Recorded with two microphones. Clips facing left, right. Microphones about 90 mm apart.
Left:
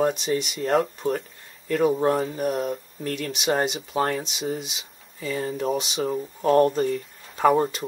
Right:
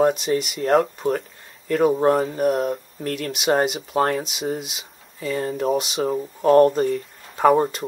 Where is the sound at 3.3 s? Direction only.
Centre (ahead or behind).